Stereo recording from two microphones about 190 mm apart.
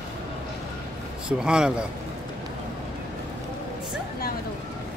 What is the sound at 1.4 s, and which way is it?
Speech, 5° right (ahead or behind).